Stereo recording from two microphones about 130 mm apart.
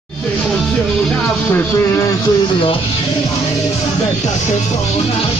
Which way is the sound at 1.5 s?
20° left (ahead or behind).